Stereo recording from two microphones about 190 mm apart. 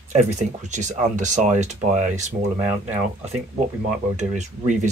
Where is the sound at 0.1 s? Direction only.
35° right (ahead or behind).